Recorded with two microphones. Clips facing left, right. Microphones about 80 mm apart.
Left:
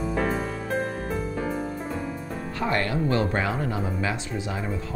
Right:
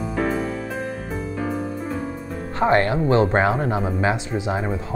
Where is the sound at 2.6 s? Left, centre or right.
Right.